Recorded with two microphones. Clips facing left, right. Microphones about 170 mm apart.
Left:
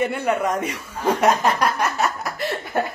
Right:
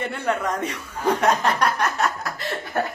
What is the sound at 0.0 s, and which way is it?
A woman's voice, 10° left (ahead or behind).